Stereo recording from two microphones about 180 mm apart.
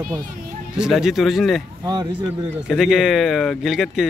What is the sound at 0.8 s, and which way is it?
Speech, centre (ahead or behind).